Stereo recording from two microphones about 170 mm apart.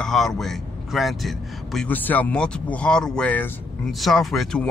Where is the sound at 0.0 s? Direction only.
Centre (ahead or behind).